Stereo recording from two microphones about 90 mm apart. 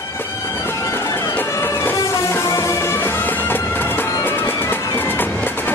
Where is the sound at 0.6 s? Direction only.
30° left (ahead or behind).